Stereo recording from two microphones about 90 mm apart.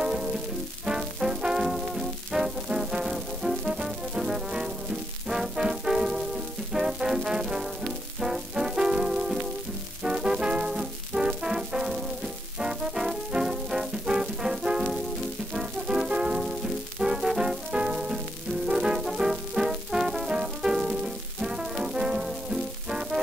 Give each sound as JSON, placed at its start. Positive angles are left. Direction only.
{"t": 0.0, "sound": "music", "side_deg": -10}